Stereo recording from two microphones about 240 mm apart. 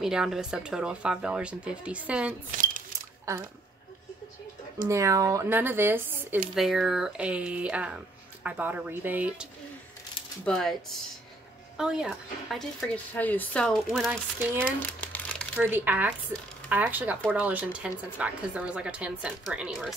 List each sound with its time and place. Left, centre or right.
0.0 s speech: centre
2.5 s a sound: right
4.8 s speech: centre
14.6 s speech: centre